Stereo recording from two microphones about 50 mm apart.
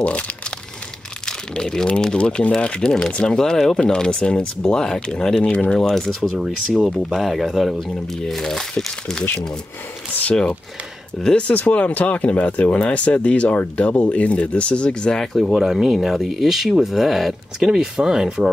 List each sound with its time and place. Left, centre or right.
1.2 s crumpling: centre
1.9 s speech: left
5.8 s speech: centre
6.3 s speech: centre
11.4 s speech: left
15.1 s speech: centre
15.5 s speech: centre